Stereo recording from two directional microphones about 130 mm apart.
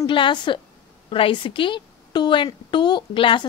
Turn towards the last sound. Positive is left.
turn(degrees=40)  # may be behind; listen again after turning